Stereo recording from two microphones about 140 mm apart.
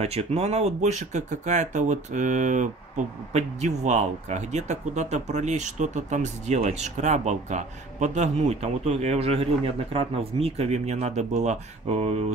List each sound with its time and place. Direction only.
0.0 s speech: 45° right (ahead or behind)